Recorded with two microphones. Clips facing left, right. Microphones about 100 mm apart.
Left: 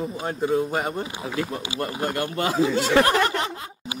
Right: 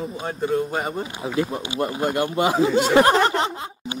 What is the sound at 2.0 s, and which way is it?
Speech, 20° right (ahead or behind).